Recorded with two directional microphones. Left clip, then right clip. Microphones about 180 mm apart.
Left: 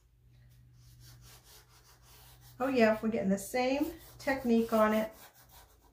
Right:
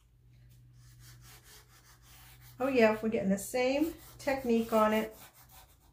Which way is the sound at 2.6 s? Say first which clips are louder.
Right 1 dB; 30° right (ahead or behind).